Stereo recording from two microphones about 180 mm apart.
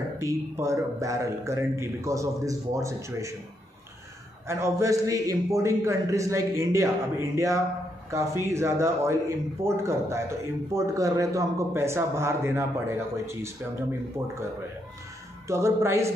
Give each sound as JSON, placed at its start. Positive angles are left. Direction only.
{"t": 0.2, "sound": "a man's voice", "side_deg": -15}
{"t": 4.5, "sound": "a man's voice", "side_deg": -15}
{"t": 15.4, "sound": "a man's voice", "side_deg": -15}